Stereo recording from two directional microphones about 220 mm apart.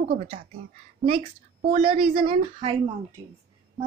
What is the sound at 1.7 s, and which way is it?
Speech, 25° right (ahead or behind).